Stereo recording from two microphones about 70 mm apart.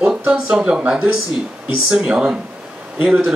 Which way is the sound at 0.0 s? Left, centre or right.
Centre.